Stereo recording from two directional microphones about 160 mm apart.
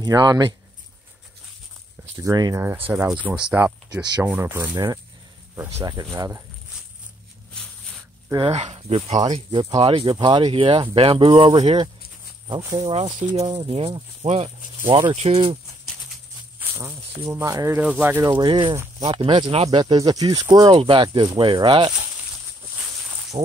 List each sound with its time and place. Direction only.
0.0 s speech: 25° right (ahead or behind)
2.1 s speech: 25° right (ahead or behind)
3.1 s speech: 5° right (ahead or behind)
3.9 s speech: 25° right (ahead or behind)
4.2 s speech: 10° right (ahead or behind)
8.5 s speech: 40° right (ahead or behind)
9.5 s speech: 25° right (ahead or behind)
16.1 s a sound: 15° right (ahead or behind)
17.7 s speech: 10° right (ahead or behind)
18.3 s speech: 30° right (ahead or behind)
23.3 s insect: 25° right (ahead or behind)